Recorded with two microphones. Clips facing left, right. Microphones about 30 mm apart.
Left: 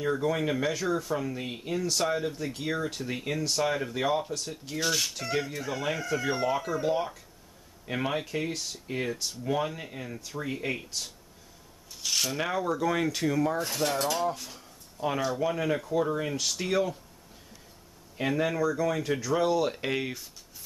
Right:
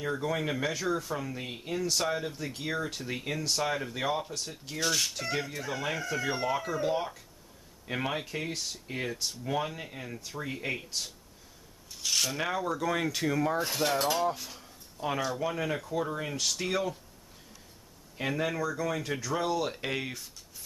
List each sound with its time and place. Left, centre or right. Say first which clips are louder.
0.0 s speech: left 4 dB; centre
18.1 s speech: left 3 dB; centre